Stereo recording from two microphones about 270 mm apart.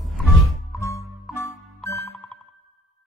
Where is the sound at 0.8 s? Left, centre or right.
Centre.